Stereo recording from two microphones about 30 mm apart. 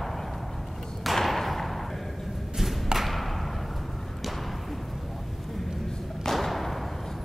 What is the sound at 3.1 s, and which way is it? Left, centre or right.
Thump, centre.